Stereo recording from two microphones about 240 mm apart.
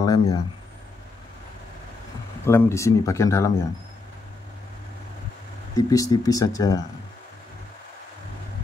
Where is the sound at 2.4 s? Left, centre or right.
Centre.